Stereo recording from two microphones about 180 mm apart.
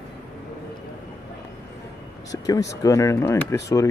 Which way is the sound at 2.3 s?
20° left (ahead or behind).